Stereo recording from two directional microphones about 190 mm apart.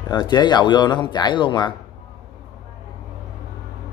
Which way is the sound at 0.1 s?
20° left (ahead or behind).